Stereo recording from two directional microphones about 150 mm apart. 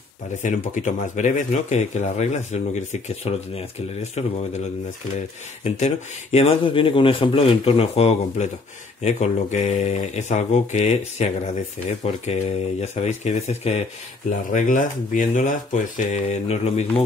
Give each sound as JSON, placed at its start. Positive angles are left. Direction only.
{"t": 0.4, "sound": "speech", "side_deg": 55}
{"t": 5.6, "sound": "speech", "side_deg": 45}
{"t": 14.5, "sound": "speech", "side_deg": 60}